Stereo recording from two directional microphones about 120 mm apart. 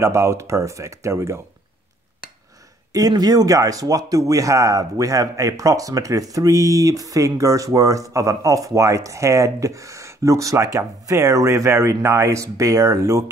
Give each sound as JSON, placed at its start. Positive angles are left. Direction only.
{"t": 0.0, "sound": "speech", "side_deg": -20}
{"t": 2.9, "sound": "speech", "side_deg": -30}